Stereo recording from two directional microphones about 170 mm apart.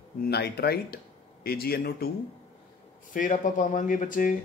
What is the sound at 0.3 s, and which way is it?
Speech, 70° left (ahead or behind).